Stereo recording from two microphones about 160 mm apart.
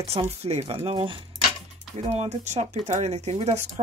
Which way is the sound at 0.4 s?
40° right (ahead or behind).